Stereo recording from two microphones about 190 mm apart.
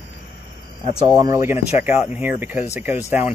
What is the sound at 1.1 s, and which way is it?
Speech, 20° right (ahead or behind).